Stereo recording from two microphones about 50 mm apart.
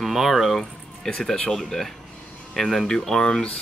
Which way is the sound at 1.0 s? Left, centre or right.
Centre.